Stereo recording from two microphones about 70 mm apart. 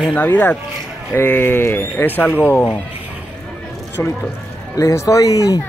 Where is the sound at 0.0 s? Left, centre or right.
Centre.